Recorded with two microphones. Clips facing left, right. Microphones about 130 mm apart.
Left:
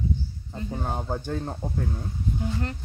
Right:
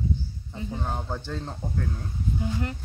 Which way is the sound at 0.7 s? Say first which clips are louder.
Left 2 dB; 10° left (ahead or behind).